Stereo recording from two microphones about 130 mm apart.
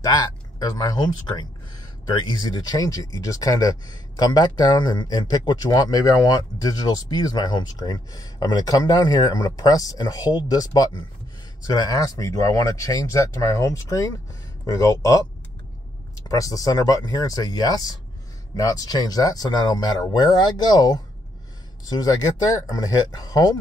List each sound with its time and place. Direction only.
0.0 s speech: 35° left (ahead or behind)
16.3 s speech: 25° left (ahead or behind)